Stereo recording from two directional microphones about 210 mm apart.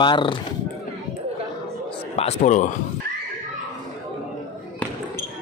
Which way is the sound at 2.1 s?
30° left (ahead or behind).